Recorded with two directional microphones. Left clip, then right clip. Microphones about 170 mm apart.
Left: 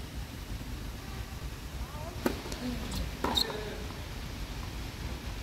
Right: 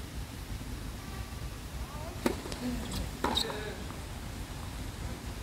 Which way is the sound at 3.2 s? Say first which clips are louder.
Even; 5° left (ahead or behind).